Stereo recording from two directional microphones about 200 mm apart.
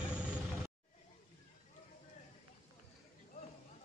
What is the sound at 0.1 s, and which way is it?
Vehicle, 5° right (ahead or behind).